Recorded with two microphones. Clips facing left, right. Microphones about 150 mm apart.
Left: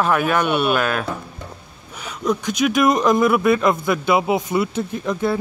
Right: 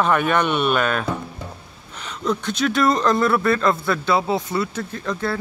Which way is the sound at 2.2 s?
15° left (ahead or behind).